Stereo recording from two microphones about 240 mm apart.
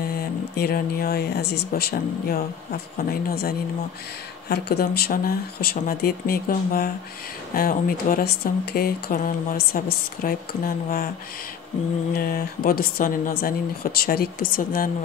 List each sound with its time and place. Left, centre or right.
0.1 s speech: left
12.2 s speech: left